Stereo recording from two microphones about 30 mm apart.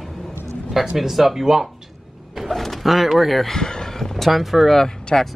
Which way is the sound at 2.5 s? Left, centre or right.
Centre.